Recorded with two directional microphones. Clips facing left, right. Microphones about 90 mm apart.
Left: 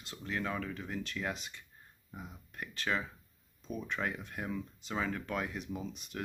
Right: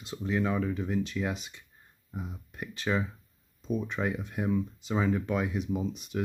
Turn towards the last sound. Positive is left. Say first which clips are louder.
# right 9 dB
turn(degrees=-20)  # may be behind; listen again after turning